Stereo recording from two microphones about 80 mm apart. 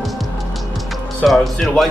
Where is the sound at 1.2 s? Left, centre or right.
Centre.